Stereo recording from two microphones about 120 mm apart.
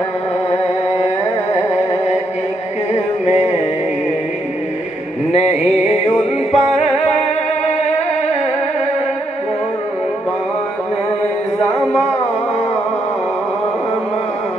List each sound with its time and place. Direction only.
1.5 s music: 65° left (ahead or behind)
5.3 s music: 65° left (ahead or behind)